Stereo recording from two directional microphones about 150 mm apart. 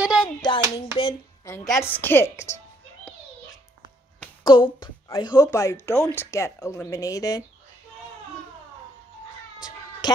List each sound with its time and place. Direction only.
0.0 s hands: 5° right (ahead or behind)
0.4 s hands: 30° left (ahead or behind)
1.7 s a woman's voice: 15° left (ahead or behind)
4.5 s a woman's voice: 35° left (ahead or behind)
10.0 s a sound: 30° left (ahead or behind)